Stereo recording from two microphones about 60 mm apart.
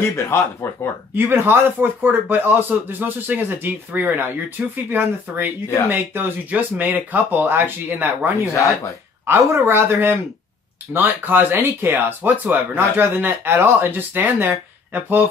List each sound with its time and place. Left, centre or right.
0.0 s speech: left
1.1 s speech: right
8.5 s speech: left
9.2 s speech: right
10.9 s speech: right